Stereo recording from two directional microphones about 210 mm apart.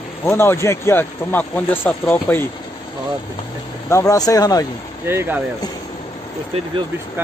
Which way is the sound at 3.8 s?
15° left (ahead or behind).